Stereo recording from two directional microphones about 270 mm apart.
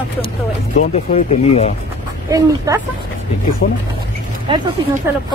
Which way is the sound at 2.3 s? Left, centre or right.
Centre.